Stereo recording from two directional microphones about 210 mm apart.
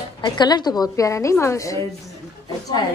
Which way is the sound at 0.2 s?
20° left (ahead or behind).